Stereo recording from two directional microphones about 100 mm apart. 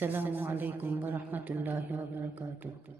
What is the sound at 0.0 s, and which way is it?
A woman's voice, 20° right (ahead or behind).